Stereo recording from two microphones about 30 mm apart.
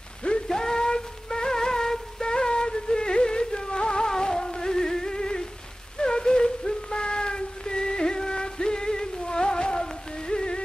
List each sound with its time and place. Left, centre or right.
0.5 s music: left
2.3 s music: left
5.9 s a sound: left
9.8 s music: left